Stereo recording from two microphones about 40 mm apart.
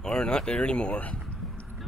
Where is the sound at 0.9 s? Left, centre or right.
Left.